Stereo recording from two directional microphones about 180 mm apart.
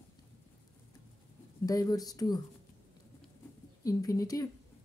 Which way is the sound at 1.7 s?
20° left (ahead or behind).